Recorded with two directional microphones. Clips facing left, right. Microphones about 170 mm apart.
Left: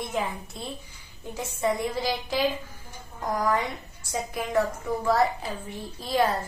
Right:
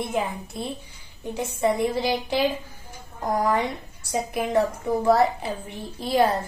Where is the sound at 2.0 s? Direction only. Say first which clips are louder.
Right 4 dB; 25° right (ahead or behind).